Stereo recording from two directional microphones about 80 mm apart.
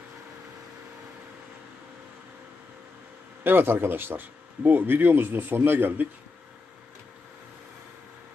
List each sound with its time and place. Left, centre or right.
3.4 s speech: right